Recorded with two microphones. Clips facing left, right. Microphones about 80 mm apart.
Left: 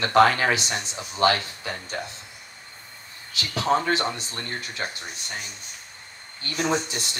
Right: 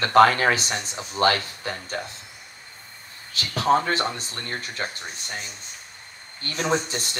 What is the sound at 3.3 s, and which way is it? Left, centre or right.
Speech, right.